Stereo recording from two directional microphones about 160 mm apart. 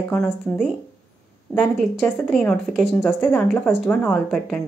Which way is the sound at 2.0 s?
5° left (ahead or behind).